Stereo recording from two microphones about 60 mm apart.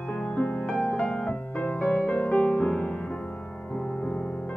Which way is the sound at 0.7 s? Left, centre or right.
Centre.